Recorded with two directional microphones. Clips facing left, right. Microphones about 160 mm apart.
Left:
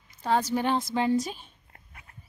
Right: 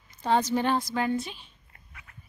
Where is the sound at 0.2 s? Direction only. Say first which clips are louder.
Right 1 dB; 5° left (ahead or behind).